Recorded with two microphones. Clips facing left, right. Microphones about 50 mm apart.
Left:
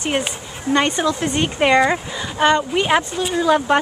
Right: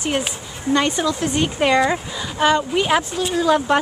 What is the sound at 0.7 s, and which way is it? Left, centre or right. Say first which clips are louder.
Speech: left 1 dB; left.